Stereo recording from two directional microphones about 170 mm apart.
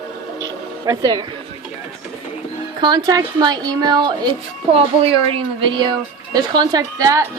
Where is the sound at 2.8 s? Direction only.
25° right (ahead or behind).